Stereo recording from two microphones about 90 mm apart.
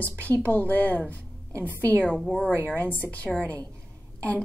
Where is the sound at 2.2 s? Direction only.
5° right (ahead or behind).